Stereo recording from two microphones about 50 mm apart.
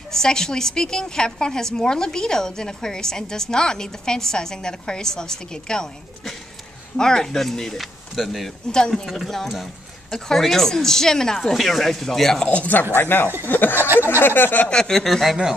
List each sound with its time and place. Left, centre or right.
0.1 s a woman's voice: centre
12.4 s speech: left
12.9 s a sound: left
13.5 s speech: left
13.7 s speech: right
14.2 s a sound: left
14.7 s a woman's voice: centre